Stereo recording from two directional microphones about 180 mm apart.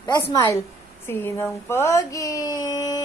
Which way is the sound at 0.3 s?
15° left (ahead or behind).